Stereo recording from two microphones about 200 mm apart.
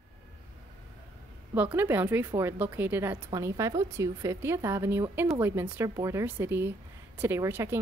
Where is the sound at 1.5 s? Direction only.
10° right (ahead or behind).